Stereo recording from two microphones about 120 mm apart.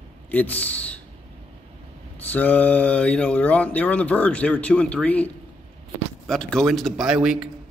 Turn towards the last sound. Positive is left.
turn(degrees=-5)  # may be behind; listen again after turning